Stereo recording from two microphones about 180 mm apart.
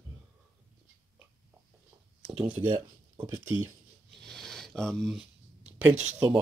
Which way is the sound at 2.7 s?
10° right (ahead or behind).